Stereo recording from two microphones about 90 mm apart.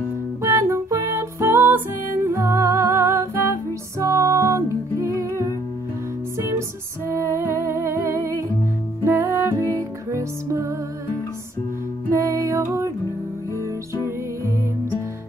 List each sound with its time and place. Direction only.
0.4 s music: 30° right (ahead or behind)
7.1 s music: 30° right (ahead or behind)
12.1 s music: 35° right (ahead or behind)